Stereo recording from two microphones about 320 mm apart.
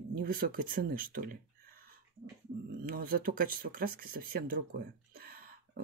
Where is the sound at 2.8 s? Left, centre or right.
Right.